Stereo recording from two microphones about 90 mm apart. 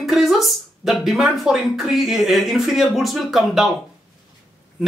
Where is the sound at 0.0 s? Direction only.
5° right (ahead or behind).